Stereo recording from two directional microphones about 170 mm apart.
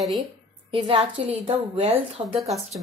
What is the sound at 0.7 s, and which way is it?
A woman's voice, 30° right (ahead or behind).